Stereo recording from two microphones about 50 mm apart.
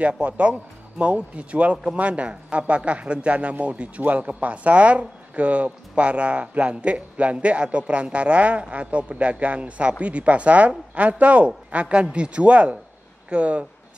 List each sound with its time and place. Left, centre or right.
0.2 s speech: right